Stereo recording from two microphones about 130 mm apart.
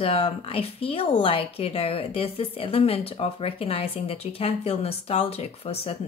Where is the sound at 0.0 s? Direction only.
50° left (ahead or behind).